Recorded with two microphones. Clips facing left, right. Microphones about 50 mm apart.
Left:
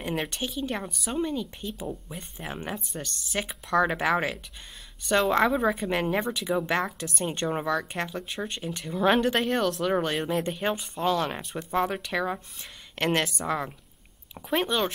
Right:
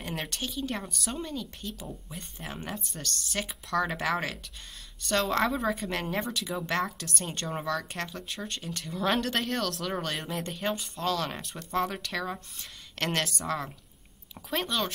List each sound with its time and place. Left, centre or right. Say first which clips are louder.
0.1 s a woman's voice: left 4 dB; centre